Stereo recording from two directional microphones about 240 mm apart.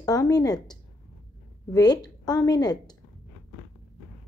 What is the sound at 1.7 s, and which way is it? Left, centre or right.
A woman's voice, centre.